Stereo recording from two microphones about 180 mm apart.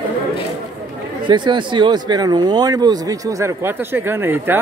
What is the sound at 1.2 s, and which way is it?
Speech, 25° right (ahead or behind).